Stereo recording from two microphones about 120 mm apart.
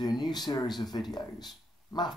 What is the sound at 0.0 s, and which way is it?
Speech, 35° left (ahead or behind).